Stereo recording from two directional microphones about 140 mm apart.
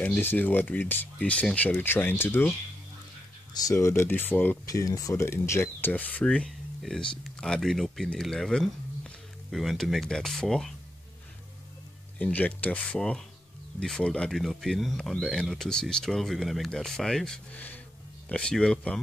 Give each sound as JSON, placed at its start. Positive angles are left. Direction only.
{"t": 0.0, "sound": "speech", "side_deg": 15}
{"t": 3.5, "sound": "speech", "side_deg": 25}
{"t": 4.6, "sound": "speech", "side_deg": 25}
{"t": 12.2, "sound": "speech", "side_deg": 10}